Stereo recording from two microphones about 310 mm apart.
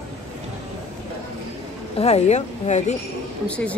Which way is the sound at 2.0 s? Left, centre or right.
Left.